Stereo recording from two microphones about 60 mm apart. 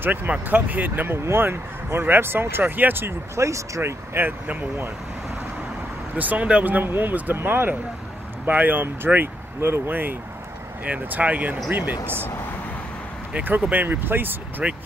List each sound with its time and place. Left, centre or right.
0.0 s speech: right
1.1 s speech: right
3.3 s speech: right
3.8 s speech: right
4.5 s speech: right
6.1 s speech: right
13.3 s speech: right
14.6 s speech: centre